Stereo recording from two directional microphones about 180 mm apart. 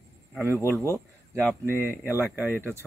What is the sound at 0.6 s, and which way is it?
Speech, 15° left (ahead or behind).